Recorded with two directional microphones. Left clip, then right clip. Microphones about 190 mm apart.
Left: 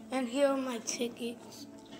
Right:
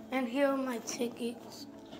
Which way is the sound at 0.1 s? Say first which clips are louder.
Left 1 dB; 5° left (ahead or behind).